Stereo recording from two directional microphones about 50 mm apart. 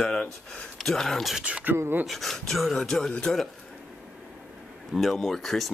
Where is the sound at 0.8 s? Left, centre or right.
Centre.